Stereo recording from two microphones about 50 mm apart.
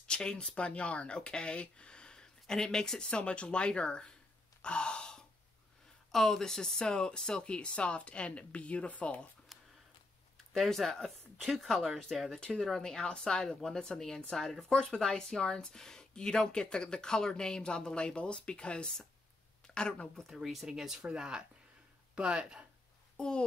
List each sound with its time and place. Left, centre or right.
0.1 s speech: centre
4.6 s gasp: centre
6.1 s speech: centre; by 9.2 s left
9.5 s a sound: centre
10.3 s speech: centre
20.2 s speech: centre
21.1 s speech: centre
23.1 s a child's voice: centre